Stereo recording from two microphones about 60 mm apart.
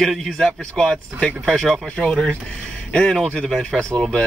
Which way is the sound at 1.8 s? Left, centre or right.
Centre.